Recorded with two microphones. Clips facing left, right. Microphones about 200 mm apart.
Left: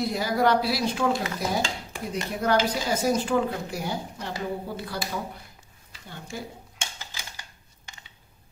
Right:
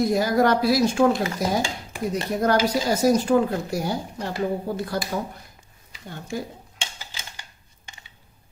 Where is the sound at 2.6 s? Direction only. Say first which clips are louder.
Right 5 dB; 40° right (ahead or behind).